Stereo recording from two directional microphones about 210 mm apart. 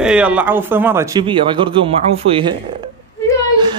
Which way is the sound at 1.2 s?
25° right (ahead or behind).